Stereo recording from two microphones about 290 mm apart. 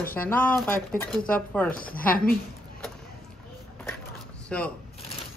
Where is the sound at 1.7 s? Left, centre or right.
Left.